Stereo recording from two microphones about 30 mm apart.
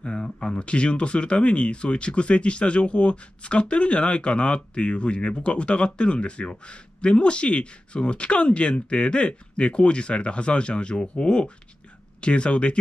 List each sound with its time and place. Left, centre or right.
0.0 s speech: left